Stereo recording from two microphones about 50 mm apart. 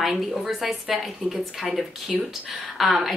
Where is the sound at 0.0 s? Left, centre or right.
Centre.